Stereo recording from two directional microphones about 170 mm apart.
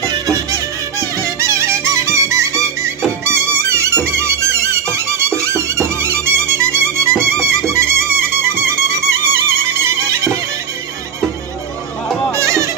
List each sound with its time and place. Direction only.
0.0 s music: 20° right (ahead or behind)
12.3 s music: 15° right (ahead or behind)